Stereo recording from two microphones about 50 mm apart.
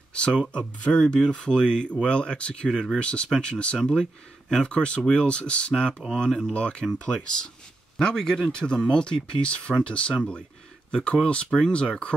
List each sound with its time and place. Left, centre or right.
0.1 s speech: centre